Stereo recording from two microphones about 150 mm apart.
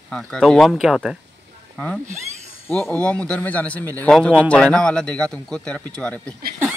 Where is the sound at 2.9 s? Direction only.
10° left (ahead or behind).